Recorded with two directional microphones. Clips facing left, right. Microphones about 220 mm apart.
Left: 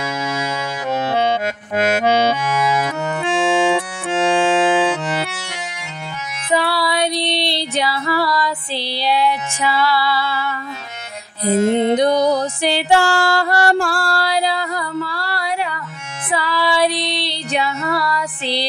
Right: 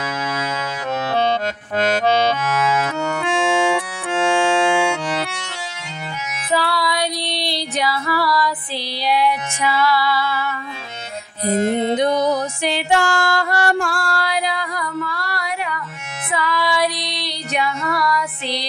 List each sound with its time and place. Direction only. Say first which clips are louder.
1.1 s accordion: right 2 dB; 10° left (ahead or behind)
4.1 s music: left 2 dB; centre (ahead or behind)
6.5 s music: left 2 dB; 25° left (ahead or behind)
11.9 s music: left 3 dB; 35° left (ahead or behind)